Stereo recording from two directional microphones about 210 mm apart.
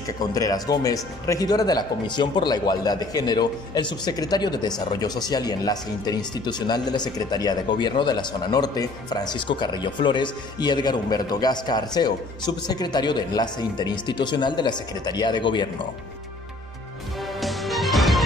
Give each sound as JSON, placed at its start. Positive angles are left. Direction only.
{"t": 0.3, "sound": "speech", "side_deg": 15}
{"t": 17.4, "sound": "music", "side_deg": 0}